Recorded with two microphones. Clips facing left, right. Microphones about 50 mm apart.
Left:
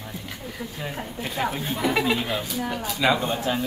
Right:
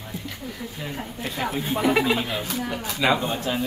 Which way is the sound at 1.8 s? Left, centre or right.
Centre.